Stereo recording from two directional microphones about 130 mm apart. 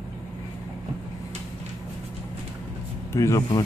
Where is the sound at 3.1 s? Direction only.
25° left (ahead or behind).